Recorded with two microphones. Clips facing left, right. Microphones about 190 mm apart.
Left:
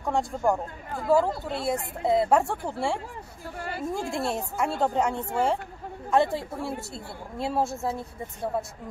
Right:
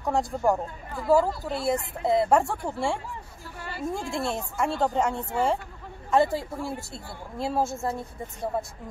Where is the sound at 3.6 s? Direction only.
50° left (ahead or behind).